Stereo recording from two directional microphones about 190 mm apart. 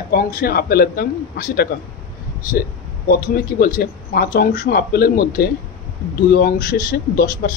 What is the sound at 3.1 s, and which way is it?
Speech, 50° left (ahead or behind).